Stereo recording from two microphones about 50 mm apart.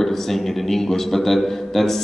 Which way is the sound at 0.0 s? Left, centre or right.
Centre.